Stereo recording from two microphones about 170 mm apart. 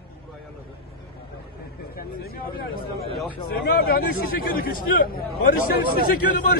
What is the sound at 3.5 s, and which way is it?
Speech, 65° left (ahead or behind).